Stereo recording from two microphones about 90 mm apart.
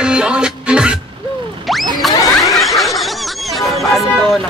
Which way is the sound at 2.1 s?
40° left (ahead or behind).